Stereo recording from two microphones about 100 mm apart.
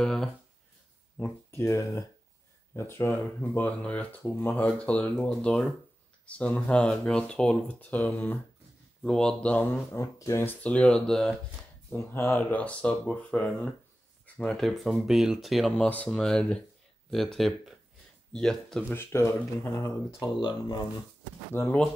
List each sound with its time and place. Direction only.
0.0 s speech: 5° left (ahead or behind)
1.1 s speech: 25° left (ahead or behind)
9.9 s speech: 30° left (ahead or behind)
10.4 s speech: 15° left (ahead or behind)
11.9 s speech: 20° left (ahead or behind); by 18.9 s 5° left (ahead or behind)
18.9 s speech: 25° left (ahead or behind)
20.2 s speech: 50° left (ahead or behind)
21.5 s speech: 25° left (ahead or behind)